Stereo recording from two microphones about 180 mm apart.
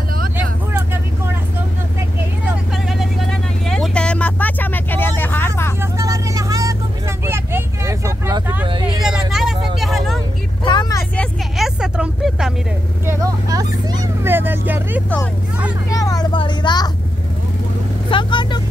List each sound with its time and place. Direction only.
2.9 s vehicle: centre (ahead or behind)
5.8 s vehicle: 20° right (ahead or behind)
9.0 s vehicle: centre (ahead or behind)
10.6 s vehicle: 25° left (ahead or behind)
11.1 s vehicle: centre (ahead or behind)
13.0 s vehicle: 15° right (ahead or behind)
15.9 s vehicle: 20° left (ahead or behind)
18.1 s vehicle: 25° left (ahead or behind)